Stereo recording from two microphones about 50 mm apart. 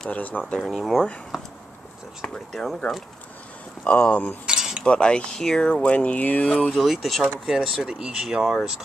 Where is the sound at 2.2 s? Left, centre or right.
Centre.